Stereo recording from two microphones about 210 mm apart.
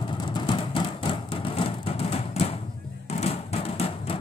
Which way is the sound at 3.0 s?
30° left (ahead or behind).